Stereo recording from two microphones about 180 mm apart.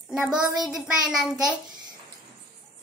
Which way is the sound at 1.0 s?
5° right (ahead or behind).